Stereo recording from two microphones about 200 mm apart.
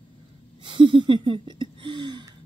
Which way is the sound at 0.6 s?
25° right (ahead or behind).